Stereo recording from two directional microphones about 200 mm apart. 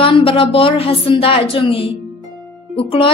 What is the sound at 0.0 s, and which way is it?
Speech, 25° left (ahead or behind).